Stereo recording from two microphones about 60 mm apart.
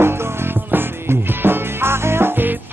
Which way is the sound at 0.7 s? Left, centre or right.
Right.